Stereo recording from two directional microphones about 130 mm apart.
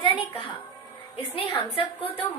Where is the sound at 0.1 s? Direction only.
40° left (ahead or behind).